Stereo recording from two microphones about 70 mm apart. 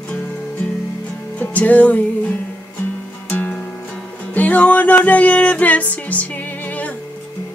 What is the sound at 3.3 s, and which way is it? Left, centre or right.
Music, left.